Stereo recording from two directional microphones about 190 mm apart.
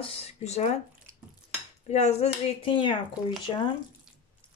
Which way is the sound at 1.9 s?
35° left (ahead or behind).